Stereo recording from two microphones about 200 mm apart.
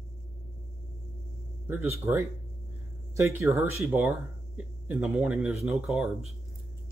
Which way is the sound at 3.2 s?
15° right (ahead or behind).